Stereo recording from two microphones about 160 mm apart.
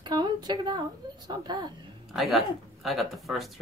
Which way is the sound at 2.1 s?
Centre (ahead or behind).